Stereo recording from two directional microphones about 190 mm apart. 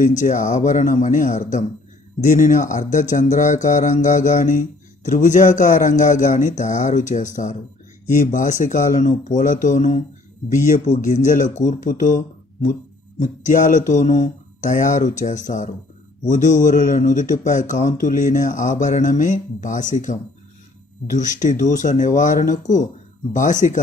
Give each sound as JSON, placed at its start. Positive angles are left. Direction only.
{"t": 0.0, "sound": "speech", "side_deg": 45}